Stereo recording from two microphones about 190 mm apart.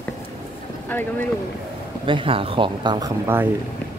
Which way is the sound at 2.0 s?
25° right (ahead or behind).